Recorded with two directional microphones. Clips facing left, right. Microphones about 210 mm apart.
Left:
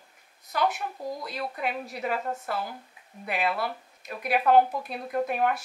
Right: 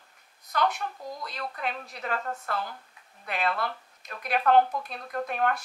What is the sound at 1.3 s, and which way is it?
A woman's voice, 5° left (ahead or behind).